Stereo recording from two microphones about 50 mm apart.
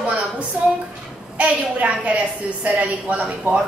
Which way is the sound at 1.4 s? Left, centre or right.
Right.